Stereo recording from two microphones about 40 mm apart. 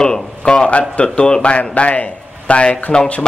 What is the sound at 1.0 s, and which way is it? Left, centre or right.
Speech, left.